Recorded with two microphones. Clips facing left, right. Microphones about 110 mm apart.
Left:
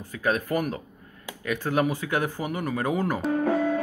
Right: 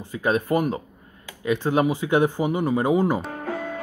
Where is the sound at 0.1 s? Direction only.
25° right (ahead or behind).